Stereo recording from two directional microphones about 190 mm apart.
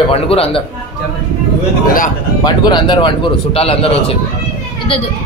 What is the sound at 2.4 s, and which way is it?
A man's voice, 20° left (ahead or behind).